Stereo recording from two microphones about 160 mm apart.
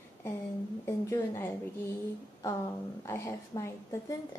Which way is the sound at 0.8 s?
15° left (ahead or behind).